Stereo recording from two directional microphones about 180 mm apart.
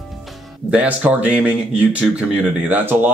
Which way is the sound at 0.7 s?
5° right (ahead or behind).